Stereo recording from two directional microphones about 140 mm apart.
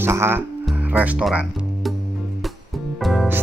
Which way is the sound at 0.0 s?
15° right (ahead or behind).